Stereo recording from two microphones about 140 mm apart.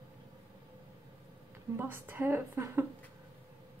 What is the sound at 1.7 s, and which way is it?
A woman's voice, 15° right (ahead or behind).